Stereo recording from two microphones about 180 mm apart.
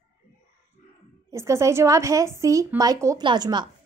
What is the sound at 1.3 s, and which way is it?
A woman's voice, 15° right (ahead or behind).